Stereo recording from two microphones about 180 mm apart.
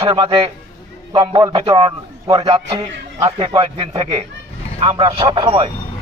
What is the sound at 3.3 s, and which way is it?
Speech, 30° right (ahead or behind).